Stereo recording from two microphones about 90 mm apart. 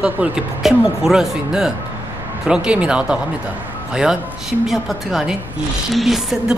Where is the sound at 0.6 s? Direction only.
5° right (ahead or behind).